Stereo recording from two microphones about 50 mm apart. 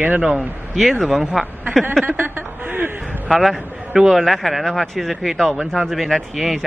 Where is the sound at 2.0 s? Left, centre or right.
Right.